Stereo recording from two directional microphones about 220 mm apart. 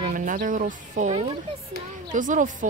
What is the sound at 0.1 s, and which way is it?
A woman's voice, 40° right (ahead or behind).